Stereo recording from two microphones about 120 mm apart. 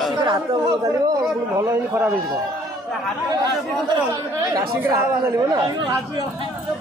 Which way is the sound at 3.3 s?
30° right (ahead or behind).